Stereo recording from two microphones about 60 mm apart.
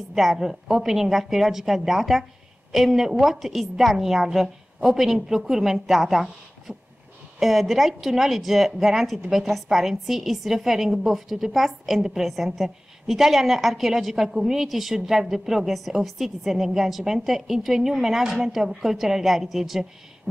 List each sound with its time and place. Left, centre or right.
0.1 s a woman's voice: centre
7.3 s a woman's voice: centre